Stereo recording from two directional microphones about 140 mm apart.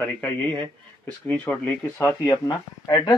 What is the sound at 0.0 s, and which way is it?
Speech, 15° left (ahead or behind).